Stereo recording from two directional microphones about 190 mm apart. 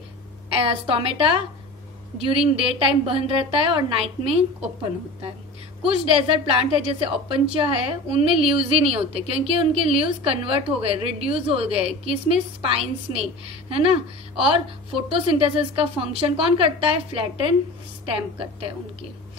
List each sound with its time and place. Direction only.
0.5 s a woman's voice: 30° right (ahead or behind)
5.9 s a woman's voice: 30° right (ahead or behind)